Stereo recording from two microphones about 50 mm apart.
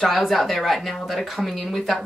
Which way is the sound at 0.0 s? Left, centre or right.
Centre.